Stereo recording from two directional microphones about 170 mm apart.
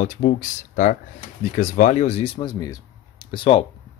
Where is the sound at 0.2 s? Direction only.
50° left (ahead or behind).